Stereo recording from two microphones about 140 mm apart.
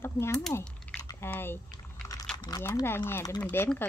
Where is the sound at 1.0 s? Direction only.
15° left (ahead or behind).